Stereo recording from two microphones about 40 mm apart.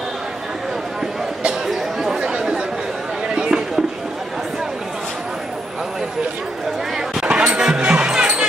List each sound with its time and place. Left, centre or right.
1.7 s chatter: centre
3.3 s a sound: centre
7.2 s basketball bounce: right